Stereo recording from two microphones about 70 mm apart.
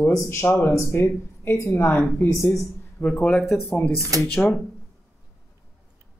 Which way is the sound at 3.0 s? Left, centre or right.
Centre.